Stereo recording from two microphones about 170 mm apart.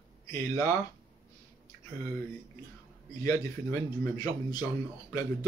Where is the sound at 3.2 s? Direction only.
20° left (ahead or behind).